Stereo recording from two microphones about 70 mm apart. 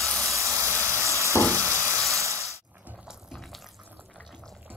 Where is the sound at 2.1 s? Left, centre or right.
Right.